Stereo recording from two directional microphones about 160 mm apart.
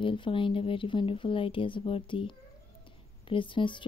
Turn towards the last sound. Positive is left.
turn(degrees=30)  # may be behind; listen again after turning